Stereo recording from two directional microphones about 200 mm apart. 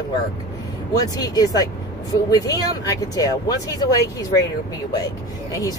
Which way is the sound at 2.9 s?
20° left (ahead or behind).